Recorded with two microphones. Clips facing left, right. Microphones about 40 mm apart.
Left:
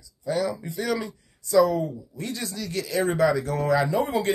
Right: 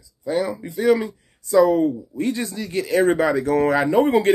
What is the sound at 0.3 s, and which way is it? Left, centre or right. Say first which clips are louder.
A man's voice: right 3 dB; right.